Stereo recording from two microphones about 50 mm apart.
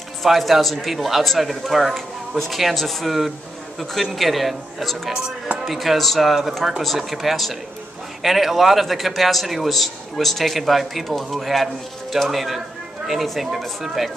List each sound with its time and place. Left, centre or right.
0.2 s a man's voice: centre